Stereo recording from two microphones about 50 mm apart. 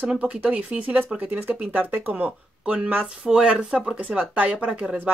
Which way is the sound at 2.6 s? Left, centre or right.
Right.